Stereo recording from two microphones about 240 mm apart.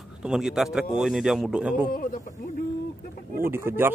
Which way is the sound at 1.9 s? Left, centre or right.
Left.